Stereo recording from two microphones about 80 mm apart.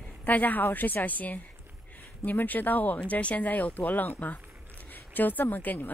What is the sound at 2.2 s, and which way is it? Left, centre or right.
Speech, left.